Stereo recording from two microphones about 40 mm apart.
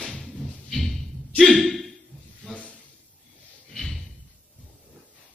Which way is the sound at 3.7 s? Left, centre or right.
Centre.